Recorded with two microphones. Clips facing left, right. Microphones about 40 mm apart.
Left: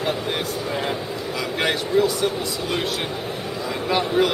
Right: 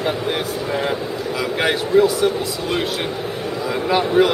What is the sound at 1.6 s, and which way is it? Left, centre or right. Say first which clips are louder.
Speech: right 4 dB; centre.